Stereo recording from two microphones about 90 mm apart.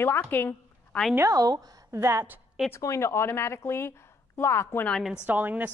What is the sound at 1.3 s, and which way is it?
Speech, 45° right (ahead or behind).